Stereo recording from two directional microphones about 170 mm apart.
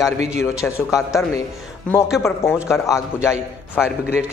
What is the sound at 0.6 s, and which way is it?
Speech, 15° left (ahead or behind).